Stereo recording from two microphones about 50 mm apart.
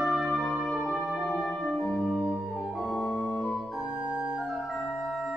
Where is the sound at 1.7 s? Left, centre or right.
Centre.